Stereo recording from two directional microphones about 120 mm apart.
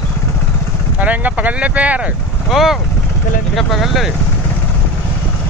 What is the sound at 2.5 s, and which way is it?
Speech, centre (ahead or behind).